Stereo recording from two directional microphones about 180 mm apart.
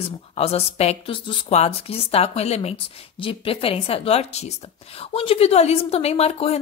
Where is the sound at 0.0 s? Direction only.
35° left (ahead or behind).